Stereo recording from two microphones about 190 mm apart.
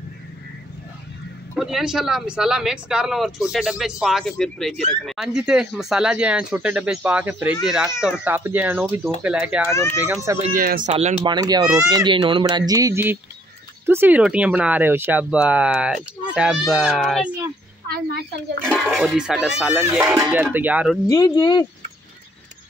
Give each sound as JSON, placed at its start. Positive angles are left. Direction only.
{"t": 1.5, "sound": "speech", "side_deg": 0}
{"t": 10.9, "sound": "speech", "side_deg": -35}
{"t": 11.2, "sound": "speech", "side_deg": -20}
{"t": 17.8, "sound": "a woman's voice", "side_deg": -50}
{"t": 18.7, "sound": "speech", "side_deg": 0}
{"t": 21.1, "sound": "speech", "side_deg": 20}